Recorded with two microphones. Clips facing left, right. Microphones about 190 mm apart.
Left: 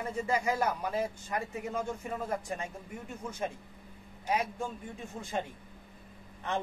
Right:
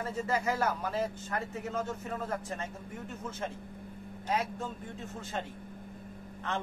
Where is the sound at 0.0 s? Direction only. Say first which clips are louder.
Left 1 dB; 15° left (ahead or behind).